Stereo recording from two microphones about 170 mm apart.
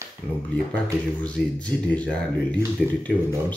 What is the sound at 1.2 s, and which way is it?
Speech, 5° left (ahead or behind).